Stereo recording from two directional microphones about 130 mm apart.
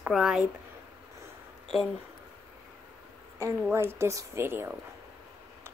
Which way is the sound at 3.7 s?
20° right (ahead or behind).